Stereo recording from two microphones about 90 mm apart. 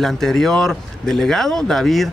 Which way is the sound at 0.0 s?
5° left (ahead or behind).